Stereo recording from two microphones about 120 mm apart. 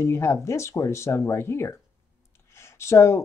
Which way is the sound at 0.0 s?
25° left (ahead or behind).